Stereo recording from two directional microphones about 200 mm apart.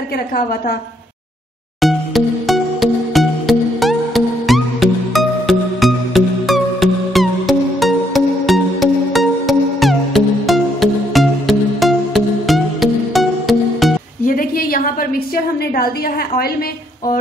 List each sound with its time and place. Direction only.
0.3 s a woman's voice: 45° left (ahead or behind)
1.8 s music: centre (ahead or behind)
14.2 s a sound: 45° left (ahead or behind)